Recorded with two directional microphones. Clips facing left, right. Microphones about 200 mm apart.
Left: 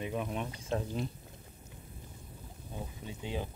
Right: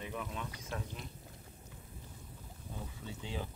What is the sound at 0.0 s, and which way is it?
Speech, 25° left (ahead or behind).